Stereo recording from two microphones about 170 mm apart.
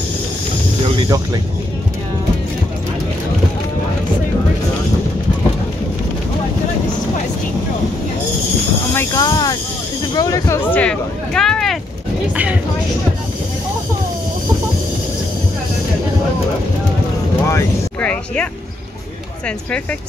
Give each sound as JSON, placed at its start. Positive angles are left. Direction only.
{"t": 1.0, "sound": "speech", "side_deg": -20}
{"t": 8.9, "sound": "speech", "side_deg": 20}
{"t": 17.5, "sound": "vehicle", "side_deg": 15}